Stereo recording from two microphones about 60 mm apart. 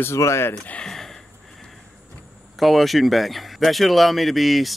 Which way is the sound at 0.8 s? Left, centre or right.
Centre.